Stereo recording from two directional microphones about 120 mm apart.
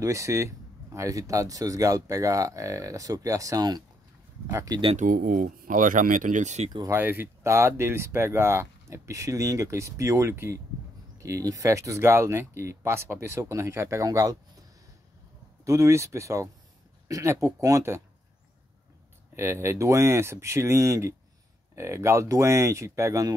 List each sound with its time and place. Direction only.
0.0 s speech: 25° right (ahead or behind)
4.9 s speech: 90° right; by 6.7 s 75° right (ahead or behind)
6.9 s speech: 15° right (ahead or behind)
15.6 s speech: 25° right (ahead or behind)
19.3 s speech: 20° right (ahead or behind)